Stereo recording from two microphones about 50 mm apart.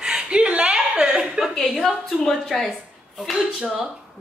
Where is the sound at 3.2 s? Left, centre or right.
Centre.